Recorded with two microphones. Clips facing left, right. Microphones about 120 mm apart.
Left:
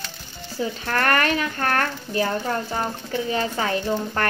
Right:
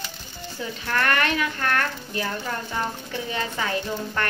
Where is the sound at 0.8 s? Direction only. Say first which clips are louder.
Left 1 dB; 40° left (ahead or behind).